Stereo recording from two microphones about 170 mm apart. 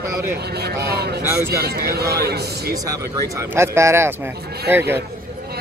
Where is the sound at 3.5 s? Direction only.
15° right (ahead or behind).